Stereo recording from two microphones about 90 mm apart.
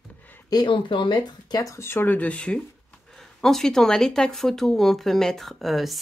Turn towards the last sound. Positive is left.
turn(degrees=0)  # may be behind; listen again after turning